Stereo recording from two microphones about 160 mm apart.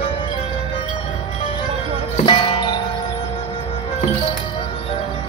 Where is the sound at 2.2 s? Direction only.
30° left (ahead or behind).